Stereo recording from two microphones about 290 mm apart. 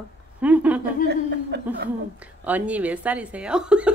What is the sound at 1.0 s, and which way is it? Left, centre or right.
Chuckle, right.